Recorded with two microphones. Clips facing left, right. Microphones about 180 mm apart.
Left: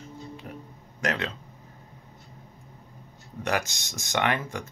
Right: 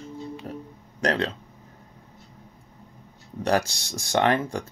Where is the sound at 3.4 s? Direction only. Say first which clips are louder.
Right 5 dB; 35° right (ahead or behind).